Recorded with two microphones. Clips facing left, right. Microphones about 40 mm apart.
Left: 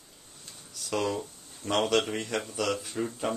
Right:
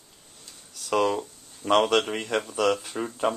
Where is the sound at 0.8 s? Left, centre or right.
Right.